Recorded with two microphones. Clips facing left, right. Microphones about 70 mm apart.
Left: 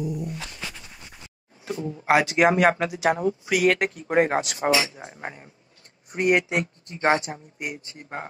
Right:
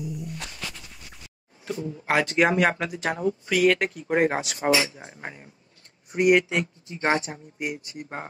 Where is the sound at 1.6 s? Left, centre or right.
Centre.